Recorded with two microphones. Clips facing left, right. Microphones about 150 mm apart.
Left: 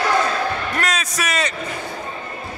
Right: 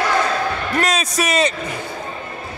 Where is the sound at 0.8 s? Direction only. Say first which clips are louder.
Right 4 dB; 30° right (ahead or behind).